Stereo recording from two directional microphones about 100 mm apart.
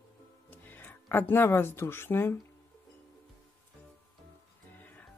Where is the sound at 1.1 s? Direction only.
20° left (ahead or behind).